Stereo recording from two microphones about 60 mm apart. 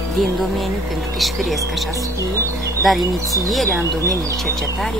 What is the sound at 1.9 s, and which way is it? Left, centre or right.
Speech, right.